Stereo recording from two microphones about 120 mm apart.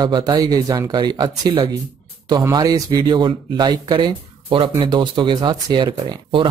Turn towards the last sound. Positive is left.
turn(degrees=-40)  # may be behind; listen again after turning